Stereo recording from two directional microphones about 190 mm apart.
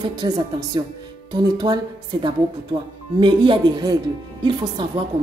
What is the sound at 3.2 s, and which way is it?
A woman's voice, 25° right (ahead or behind).